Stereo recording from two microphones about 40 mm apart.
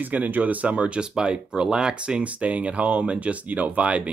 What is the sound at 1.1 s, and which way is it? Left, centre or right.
Speech, centre.